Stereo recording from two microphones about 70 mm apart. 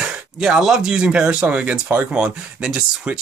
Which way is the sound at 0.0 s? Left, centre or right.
Centre.